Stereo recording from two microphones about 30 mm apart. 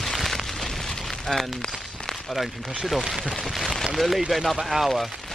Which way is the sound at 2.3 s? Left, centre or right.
Centre.